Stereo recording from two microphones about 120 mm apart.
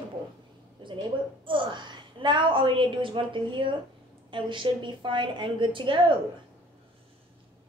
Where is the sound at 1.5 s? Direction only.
40° right (ahead or behind).